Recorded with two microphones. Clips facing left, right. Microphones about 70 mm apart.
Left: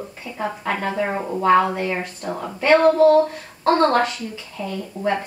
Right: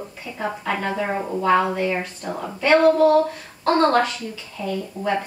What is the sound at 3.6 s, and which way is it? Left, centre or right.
Speech, left.